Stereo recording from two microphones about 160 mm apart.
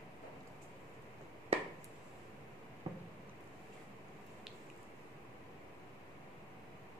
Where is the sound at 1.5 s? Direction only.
40° right (ahead or behind).